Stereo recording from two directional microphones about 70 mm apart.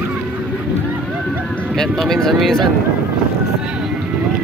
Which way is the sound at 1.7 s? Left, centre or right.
Centre.